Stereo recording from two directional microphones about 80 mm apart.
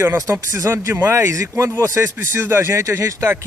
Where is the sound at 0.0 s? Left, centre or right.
Right.